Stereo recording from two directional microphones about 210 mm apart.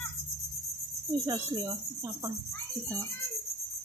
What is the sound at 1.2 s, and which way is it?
Speech, 15° right (ahead or behind).